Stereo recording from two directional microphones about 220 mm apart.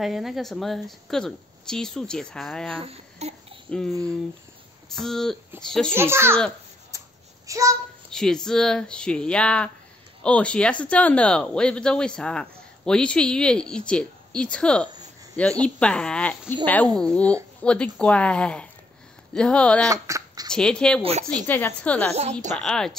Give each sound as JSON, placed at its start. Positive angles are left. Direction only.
{"t": 0.0, "sound": "speech", "side_deg": 0}
{"t": 2.8, "sound": "speech", "side_deg": -30}
{"t": 3.7, "sound": "speech", "side_deg": 5}
{"t": 5.9, "sound": "a child's voice", "side_deg": -10}
{"t": 6.9, "sound": "a sound", "side_deg": -15}
{"t": 7.4, "sound": "a child's voice", "side_deg": -15}
{"t": 8.1, "sound": "a sound", "side_deg": 5}
{"t": 8.5, "sound": "speech", "side_deg": 0}
{"t": 19.9, "sound": "speech", "side_deg": -15}
{"t": 20.5, "sound": "speech", "side_deg": 5}
{"t": 21.0, "sound": "speech", "side_deg": -30}
{"t": 21.5, "sound": "a woman's voice", "side_deg": 10}